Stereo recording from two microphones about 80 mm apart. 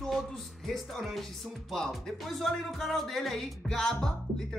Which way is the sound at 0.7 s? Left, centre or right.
Centre.